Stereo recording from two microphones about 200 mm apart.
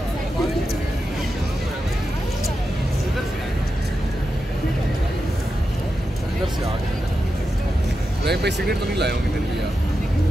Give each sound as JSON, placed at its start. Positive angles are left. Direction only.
{"t": 8.3, "sound": "speech", "side_deg": -55}